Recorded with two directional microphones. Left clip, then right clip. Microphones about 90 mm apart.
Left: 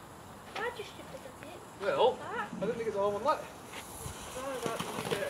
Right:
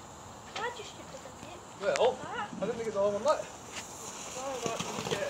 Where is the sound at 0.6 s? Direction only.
15° right (ahead or behind).